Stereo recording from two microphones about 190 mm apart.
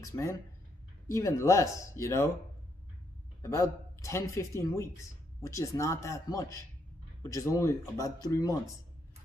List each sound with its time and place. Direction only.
0.0 s speech: 15° left (ahead or behind)
3.4 s speech: 15° left (ahead or behind)